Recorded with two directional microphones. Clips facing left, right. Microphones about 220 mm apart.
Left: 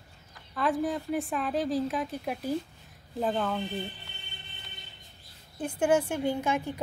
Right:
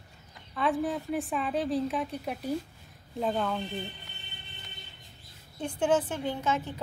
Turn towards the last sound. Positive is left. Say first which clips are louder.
# left 2 dB
turn(degrees=10)  # may be behind; listen again after turning